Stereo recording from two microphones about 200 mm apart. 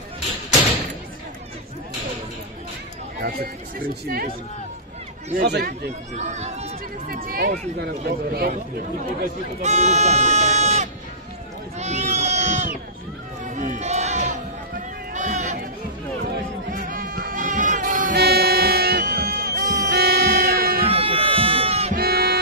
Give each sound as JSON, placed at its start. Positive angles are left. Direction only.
{"t": 5.3, "sound": "speech", "side_deg": -55}
{"t": 6.1, "sound": "speech", "side_deg": -35}
{"t": 7.1, "sound": "speech", "side_deg": -45}
{"t": 9.2, "sound": "speech", "side_deg": -35}
{"t": 11.8, "sound": "sheep", "side_deg": -35}
{"t": 13.5, "sound": "crowd", "side_deg": -40}
{"t": 15.1, "sound": "a sound", "side_deg": -40}
{"t": 16.3, "sound": "music", "side_deg": -45}
{"t": 19.9, "sound": "music", "side_deg": -55}
{"t": 20.9, "sound": "a sound", "side_deg": -30}
{"t": 21.9, "sound": "music", "side_deg": -50}